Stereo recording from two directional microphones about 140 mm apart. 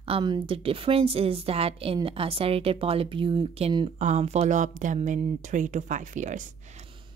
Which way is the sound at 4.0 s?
55° right (ahead or behind).